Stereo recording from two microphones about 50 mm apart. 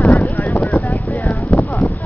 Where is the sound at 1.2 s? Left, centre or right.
Left.